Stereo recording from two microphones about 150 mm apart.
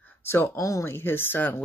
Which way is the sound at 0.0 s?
15° left (ahead or behind).